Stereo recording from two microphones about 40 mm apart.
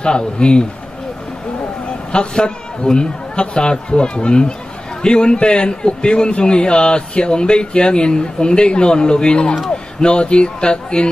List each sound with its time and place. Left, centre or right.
0.0 s a man's voice: left
2.1 s a man's voice: left